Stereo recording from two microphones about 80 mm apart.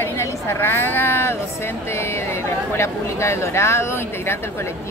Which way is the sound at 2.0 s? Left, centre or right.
Left.